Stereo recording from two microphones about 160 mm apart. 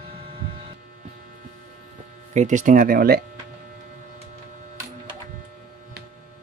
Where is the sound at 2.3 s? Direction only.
50° right (ahead or behind); by 3.2 s 70° right (ahead or behind).